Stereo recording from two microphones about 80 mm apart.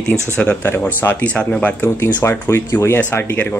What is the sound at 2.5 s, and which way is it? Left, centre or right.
Speech, left.